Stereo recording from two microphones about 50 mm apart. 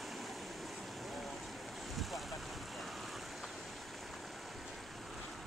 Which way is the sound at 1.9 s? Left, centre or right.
Centre.